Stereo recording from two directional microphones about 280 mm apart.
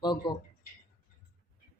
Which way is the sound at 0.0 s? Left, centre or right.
Centre.